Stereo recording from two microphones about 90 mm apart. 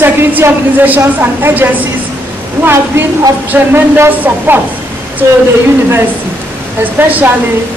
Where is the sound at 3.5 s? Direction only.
25° right (ahead or behind).